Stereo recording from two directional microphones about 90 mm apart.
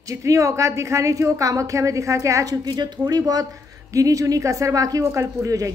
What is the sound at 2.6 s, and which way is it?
A woman's voice, 50° right (ahead or behind).